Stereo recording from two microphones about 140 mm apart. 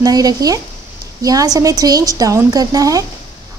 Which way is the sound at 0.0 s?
25° right (ahead or behind).